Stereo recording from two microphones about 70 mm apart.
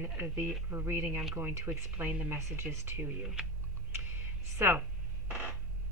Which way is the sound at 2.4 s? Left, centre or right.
Right.